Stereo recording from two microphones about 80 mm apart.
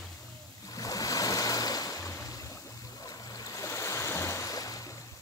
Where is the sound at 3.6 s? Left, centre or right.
Left.